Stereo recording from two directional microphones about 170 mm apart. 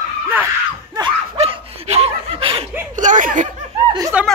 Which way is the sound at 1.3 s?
40° right (ahead or behind).